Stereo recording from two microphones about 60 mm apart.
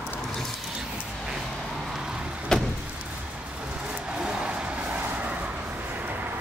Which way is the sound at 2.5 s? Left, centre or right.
Centre.